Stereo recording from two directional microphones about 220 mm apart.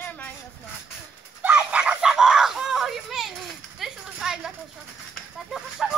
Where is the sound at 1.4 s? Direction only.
5° right (ahead or behind).